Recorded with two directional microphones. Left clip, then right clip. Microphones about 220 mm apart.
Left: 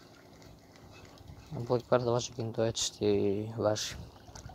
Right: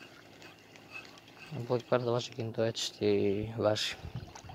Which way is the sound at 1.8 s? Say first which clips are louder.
Left 2 dB; 10° left (ahead or behind).